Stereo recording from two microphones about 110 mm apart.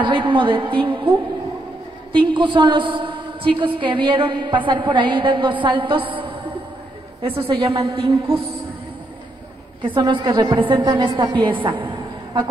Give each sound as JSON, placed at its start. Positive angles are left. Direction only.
{"t": 0.0, "sound": "a woman's voice", "side_deg": -50}
{"t": 2.1, "sound": "a woman's voice", "side_deg": -50}
{"t": 9.9, "sound": "a woman's voice", "side_deg": -45}